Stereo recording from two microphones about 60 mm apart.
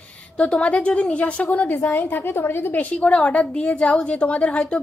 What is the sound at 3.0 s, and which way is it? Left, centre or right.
A woman's voice, left.